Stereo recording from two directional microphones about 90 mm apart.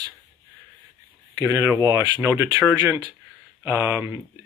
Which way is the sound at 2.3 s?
20° right (ahead or behind).